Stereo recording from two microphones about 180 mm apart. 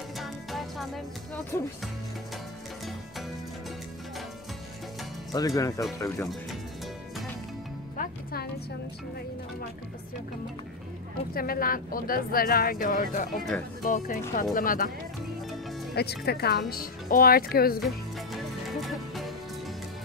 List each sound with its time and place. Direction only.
0.2 s music: centre (ahead or behind)
5.3 s speech: 20° left (ahead or behind)
8.0 s music: 55° left (ahead or behind)
11.3 s a woman's voice: 55° left (ahead or behind)
15.9 s speech: 65° left (ahead or behind)
17.7 s music: centre (ahead or behind)